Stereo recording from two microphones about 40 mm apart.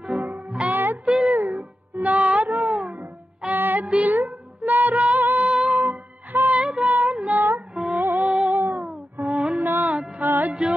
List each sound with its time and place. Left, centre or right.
0.0 s music: right
0.7 s music: right
1.0 s music: right
1.3 s music: right
2.0 s music: right
5.5 s music: right
5.8 s music: right
8.3 s music: right
8.5 s music: right
9.7 s music: right